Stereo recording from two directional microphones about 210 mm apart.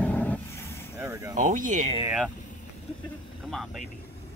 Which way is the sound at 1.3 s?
40° right (ahead or behind).